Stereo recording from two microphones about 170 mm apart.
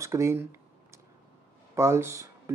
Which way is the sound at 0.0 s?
15° right (ahead or behind).